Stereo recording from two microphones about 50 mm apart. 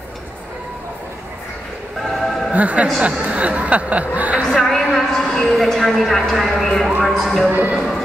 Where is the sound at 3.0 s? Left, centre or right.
Right.